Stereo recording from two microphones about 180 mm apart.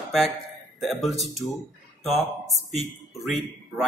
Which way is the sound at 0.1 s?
Centre (ahead or behind).